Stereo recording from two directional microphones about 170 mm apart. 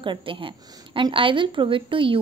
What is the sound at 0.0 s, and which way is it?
A woman's voice, 30° right (ahead or behind).